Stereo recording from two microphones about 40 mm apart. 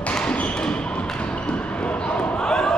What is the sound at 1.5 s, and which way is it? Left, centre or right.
Basketball bounce, left.